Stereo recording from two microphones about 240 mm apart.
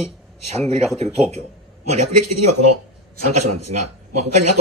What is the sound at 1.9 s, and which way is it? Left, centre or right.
A man's voice, right.